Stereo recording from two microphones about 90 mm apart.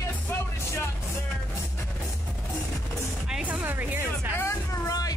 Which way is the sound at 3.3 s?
10° right (ahead or behind).